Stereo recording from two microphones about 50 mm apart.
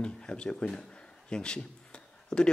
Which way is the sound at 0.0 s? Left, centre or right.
Centre.